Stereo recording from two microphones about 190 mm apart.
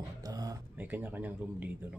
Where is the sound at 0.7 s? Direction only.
10° right (ahead or behind).